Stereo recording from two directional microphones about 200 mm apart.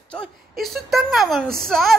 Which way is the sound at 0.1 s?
Centre (ahead or behind).